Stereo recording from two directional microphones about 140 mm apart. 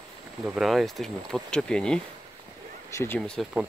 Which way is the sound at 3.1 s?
5° left (ahead or behind).